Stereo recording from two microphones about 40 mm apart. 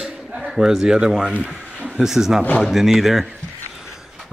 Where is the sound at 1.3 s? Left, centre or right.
Right.